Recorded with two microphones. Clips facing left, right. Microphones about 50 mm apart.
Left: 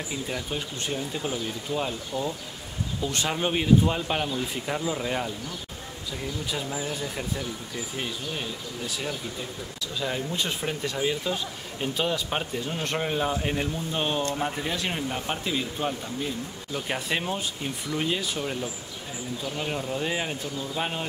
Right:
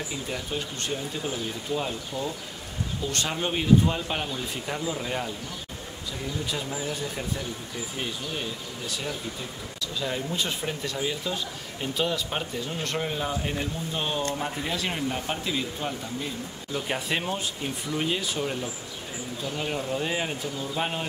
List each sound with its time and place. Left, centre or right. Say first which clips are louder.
0.3 s speech: even; centre
2.1 s speech: left 3 dB; right
3.1 s speech: left 2 dB; centre
6.4 s speech: even; centre
8.8 s speech: even; centre
14.7 s speech: even; centre